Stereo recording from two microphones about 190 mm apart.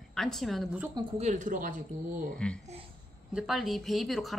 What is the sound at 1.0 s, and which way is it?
Speech, 35° right (ahead or behind).